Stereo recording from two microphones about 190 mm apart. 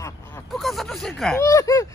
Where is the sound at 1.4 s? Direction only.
15° left (ahead or behind).